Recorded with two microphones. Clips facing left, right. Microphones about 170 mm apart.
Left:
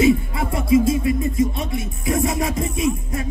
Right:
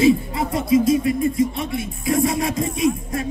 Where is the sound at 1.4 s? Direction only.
25° left (ahead or behind).